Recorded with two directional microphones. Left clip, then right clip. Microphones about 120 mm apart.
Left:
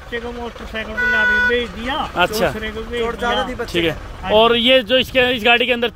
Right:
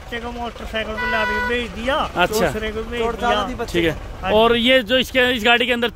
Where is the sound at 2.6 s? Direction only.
30° right (ahead or behind).